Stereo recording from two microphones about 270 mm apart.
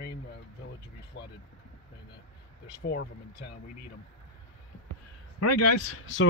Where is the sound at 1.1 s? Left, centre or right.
Left.